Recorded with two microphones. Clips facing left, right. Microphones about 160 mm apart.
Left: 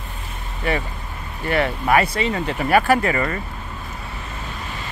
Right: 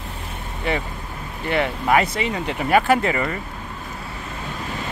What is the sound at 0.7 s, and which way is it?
Speech, 20° right (ahead or behind).